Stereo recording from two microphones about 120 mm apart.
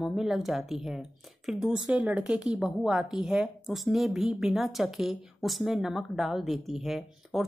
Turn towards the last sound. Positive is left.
turn(degrees=0)  # may be behind; listen again after turning